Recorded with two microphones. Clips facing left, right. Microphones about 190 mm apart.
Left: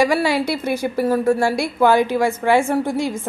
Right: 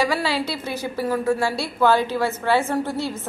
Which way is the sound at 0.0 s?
15° left (ahead or behind).